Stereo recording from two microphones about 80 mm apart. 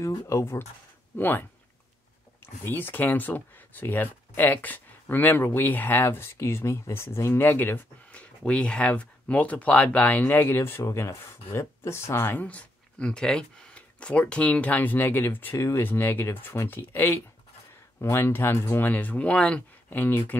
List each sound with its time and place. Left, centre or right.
0.3 s speech: left
8.1 s speech: centre
12.4 s speech: centre
20.0 s speech: left